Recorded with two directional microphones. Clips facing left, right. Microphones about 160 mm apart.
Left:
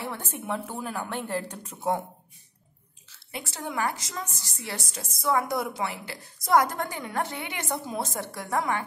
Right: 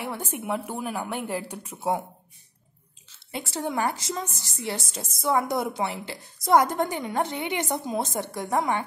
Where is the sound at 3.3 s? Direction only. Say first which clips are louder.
Right 5 dB; 30° right (ahead or behind).